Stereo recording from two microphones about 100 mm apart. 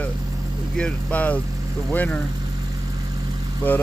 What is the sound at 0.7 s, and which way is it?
Speech, 10° left (ahead or behind).